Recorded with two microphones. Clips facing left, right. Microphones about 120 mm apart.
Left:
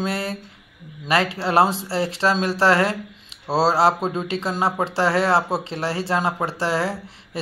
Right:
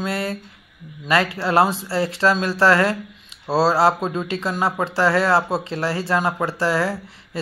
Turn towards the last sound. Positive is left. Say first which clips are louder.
# right 1 dB
turn(degrees=25)  # may be behind; listen again after turning